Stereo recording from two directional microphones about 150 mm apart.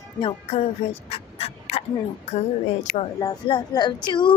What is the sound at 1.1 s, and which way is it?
Fowl, 45° left (ahead or behind).